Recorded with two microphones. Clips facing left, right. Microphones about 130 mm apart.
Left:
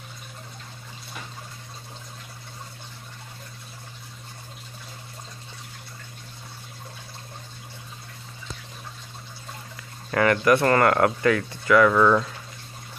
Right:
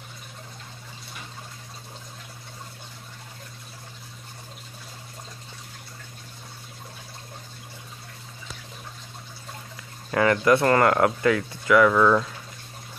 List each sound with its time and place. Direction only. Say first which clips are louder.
10.1 s speech: even; 15° right (ahead or behind)
11.9 s speech: even; centre (ahead or behind)